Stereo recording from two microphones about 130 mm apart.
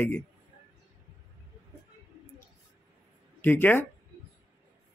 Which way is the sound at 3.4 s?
15° left (ahead or behind).